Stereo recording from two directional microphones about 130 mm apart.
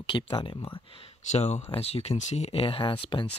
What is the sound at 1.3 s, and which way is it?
Speech, 60° left (ahead or behind).